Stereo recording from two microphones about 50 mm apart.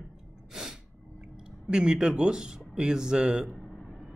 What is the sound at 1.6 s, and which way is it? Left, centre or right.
Speech, centre.